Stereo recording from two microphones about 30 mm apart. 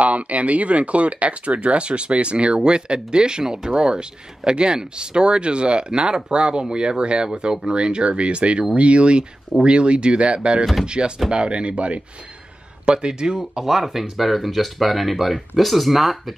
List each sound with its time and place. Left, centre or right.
0.0 s speech: right
13.7 s speech: centre